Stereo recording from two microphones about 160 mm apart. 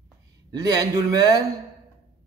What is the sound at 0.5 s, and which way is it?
Speech, 25° right (ahead or behind).